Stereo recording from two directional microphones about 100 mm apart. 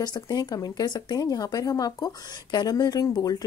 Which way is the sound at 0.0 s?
45° left (ahead or behind).